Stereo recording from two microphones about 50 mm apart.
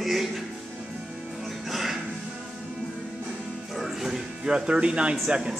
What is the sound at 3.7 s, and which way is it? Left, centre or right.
Music, centre.